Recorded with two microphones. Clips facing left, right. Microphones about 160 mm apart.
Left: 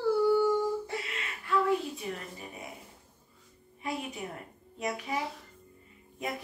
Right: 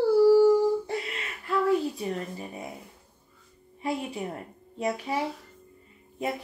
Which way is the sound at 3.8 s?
30° right (ahead or behind).